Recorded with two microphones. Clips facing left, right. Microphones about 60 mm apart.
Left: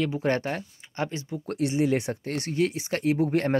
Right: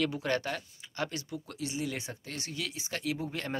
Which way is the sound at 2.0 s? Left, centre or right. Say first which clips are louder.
Left 11 dB; left.